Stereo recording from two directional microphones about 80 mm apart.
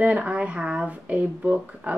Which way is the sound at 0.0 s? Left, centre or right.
Centre.